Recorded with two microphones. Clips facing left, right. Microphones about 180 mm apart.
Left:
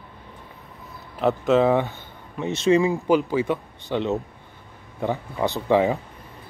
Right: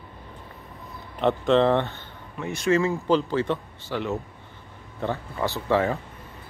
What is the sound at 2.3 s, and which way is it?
Speech, 20° left (ahead or behind).